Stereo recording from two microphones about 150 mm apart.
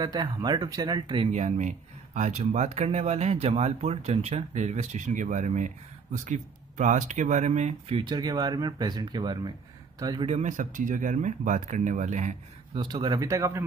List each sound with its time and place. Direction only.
0.0 s speech: 30° right (ahead or behind)
1.3 s speech: 50° right (ahead or behind)
8.1 s speech: 25° right (ahead or behind)
10.2 s speech: 50° right (ahead or behind)
12.7 s speech: 30° right (ahead or behind)